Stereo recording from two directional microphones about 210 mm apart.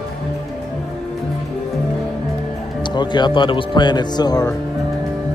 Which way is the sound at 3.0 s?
20° left (ahead or behind).